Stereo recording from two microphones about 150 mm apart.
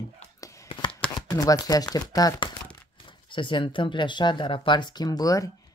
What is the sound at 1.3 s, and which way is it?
Speech, 25° left (ahead or behind).